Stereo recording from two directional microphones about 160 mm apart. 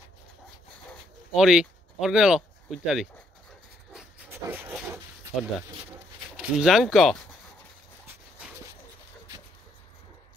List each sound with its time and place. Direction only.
1.3 s speech: 5° right (ahead or behind)
4.4 s a sound: 20° right (ahead or behind)
6.3 s speech: centre (ahead or behind)